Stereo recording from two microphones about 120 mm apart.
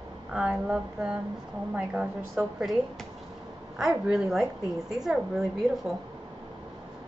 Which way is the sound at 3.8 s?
5° right (ahead or behind).